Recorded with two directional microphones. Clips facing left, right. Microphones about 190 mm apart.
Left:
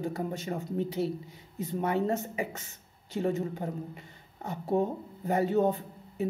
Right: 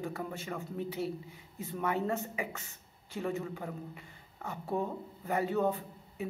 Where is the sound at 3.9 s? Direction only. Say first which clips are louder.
Left 3 dB; 20° left (ahead or behind).